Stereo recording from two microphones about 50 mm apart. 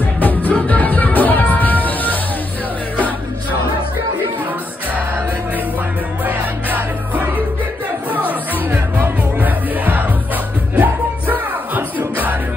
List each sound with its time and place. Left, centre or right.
0.2 s music: left
6.2 s music: right
8.3 s music: right